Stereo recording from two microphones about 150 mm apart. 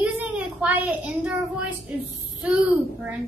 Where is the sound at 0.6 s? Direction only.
10° right (ahead or behind).